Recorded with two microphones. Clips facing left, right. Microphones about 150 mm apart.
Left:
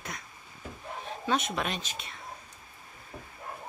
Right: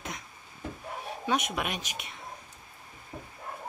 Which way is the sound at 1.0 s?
15° right (ahead or behind).